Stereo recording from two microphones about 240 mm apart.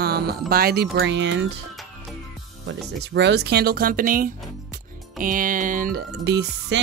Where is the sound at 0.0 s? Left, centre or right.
Right.